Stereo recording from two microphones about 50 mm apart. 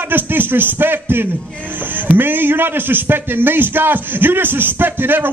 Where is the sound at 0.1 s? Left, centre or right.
Right.